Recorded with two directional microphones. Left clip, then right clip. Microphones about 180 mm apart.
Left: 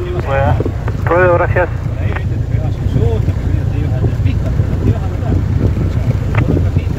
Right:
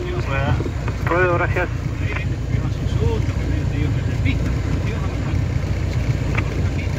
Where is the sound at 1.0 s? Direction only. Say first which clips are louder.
Left 7 dB; 55° left (ahead or behind).